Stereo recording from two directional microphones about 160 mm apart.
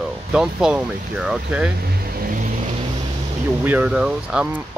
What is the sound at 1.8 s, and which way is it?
Vehicle, 70° right (ahead or behind).